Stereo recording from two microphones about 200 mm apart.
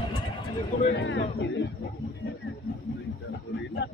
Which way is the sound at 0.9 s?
70° left (ahead or behind).